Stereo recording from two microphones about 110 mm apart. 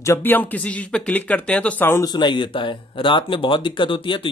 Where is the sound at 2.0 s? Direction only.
40° left (ahead or behind).